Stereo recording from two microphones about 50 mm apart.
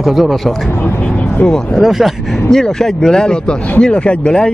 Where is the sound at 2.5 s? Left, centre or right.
Centre.